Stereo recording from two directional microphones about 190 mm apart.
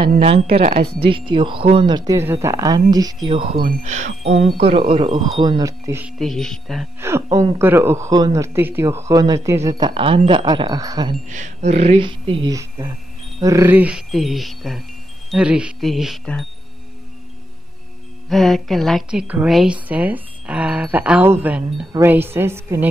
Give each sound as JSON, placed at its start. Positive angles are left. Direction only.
{"t": 0.5, "sound": "speech", "side_deg": -50}
{"t": 1.0, "sound": "speech", "side_deg": -25}
{"t": 3.5, "sound": "speech", "side_deg": -45}
{"t": 6.1, "sound": "a woman's voice", "side_deg": 0}
{"t": 7.0, "sound": "speech", "side_deg": -15}
{"t": 11.2, "sound": "a woman's voice", "side_deg": -40}
{"t": 18.3, "sound": "a woman's voice", "side_deg": 0}